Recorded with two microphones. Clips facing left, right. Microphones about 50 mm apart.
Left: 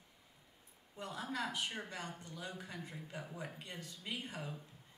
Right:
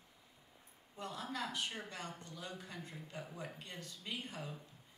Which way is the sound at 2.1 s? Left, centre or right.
Right.